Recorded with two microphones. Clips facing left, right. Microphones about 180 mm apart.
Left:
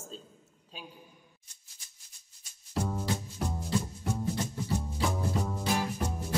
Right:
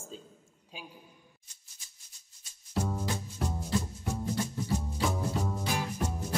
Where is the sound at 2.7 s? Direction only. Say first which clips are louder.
Left 1 dB; centre (ahead or behind).